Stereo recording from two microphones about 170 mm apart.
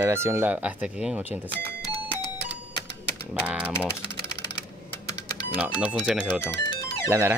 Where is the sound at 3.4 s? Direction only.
10° right (ahead or behind).